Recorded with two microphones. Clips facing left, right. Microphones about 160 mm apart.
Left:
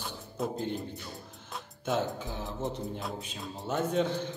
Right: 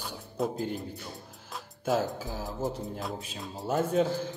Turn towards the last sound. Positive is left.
turn(degrees=-5)  # may be behind; listen again after turning